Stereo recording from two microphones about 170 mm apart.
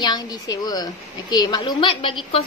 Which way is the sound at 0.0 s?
25° left (ahead or behind).